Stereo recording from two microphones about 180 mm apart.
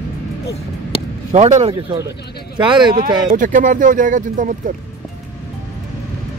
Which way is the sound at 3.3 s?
50° right (ahead or behind).